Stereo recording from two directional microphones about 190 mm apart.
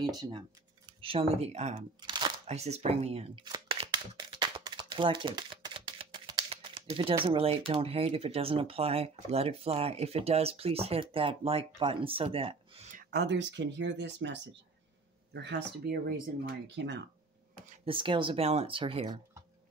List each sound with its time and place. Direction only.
0.0 s speech: 25° right (ahead or behind)
2.0 s shuffling cards: 25° right (ahead or behind)
2.4 s speech: 35° right (ahead or behind)
13.1 s speech: 60° right (ahead or behind)
16.6 s speech: 70° right (ahead or behind)
17.8 s speech: 25° right (ahead or behind)